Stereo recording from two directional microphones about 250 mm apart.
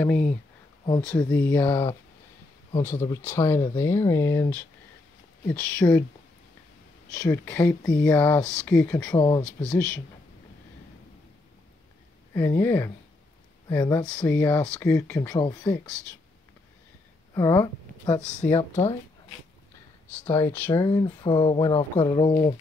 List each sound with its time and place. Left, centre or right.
1.0 s speech: centre
7.2 s speech: centre
9.6 s speech: centre
12.4 s speech: centre
17.3 s a sound: centre
18.6 s speech: left
20.1 s speech: centre